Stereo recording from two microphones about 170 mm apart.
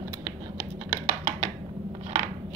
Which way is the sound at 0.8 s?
40° right (ahead or behind).